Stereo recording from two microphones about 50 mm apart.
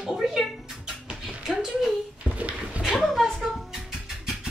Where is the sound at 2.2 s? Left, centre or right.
Right.